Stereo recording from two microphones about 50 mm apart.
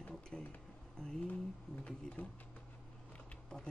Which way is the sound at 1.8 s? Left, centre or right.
Left.